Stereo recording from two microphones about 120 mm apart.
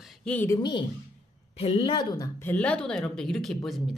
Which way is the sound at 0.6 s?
40° left (ahead or behind).